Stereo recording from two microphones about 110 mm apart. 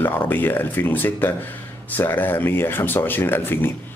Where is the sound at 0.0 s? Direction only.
20° left (ahead or behind).